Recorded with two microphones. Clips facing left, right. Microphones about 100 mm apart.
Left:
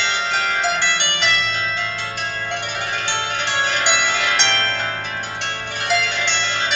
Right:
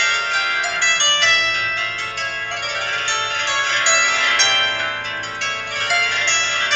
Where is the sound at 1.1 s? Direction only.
15° left (ahead or behind).